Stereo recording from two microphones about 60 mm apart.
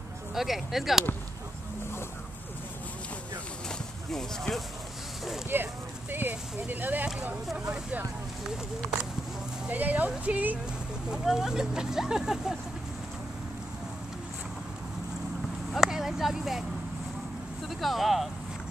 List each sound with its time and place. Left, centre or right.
0.3 s speech: centre
4.1 s speech: centre
5.5 s clip-clop: right
6.6 s speech: right
9.7 s speech: right
11.1 s speech: centre
15.7 s a sound: centre
17.6 s speech: centre